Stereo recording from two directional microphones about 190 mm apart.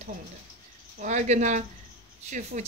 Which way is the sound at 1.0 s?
40° right (ahead or behind).